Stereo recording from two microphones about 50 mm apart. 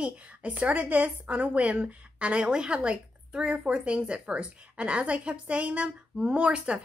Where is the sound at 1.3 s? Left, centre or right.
Right.